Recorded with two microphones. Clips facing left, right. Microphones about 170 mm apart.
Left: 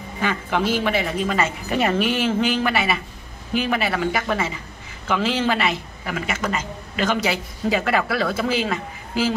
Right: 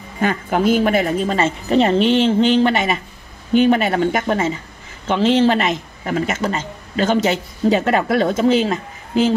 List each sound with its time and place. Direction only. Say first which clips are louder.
0.2 s a woman's voice: right 5 dB; 45° right (ahead or behind)
2.0 s a sound: right 7 dB; 5° left (ahead or behind)
2.2 s a man's voice: right 6 dB; 35° right (ahead or behind)